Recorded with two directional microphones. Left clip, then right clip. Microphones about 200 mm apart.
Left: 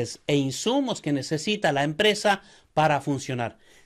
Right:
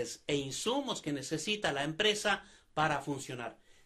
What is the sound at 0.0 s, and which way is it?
Speech, 40° left (ahead or behind).